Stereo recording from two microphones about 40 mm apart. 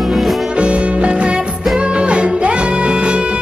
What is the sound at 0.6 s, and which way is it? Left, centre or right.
Music, right.